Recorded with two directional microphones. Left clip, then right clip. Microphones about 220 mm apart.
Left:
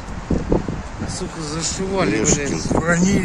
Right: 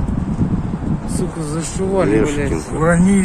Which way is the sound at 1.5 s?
50° right (ahead or behind).